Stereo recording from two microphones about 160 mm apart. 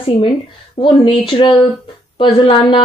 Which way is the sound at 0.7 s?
30° left (ahead or behind).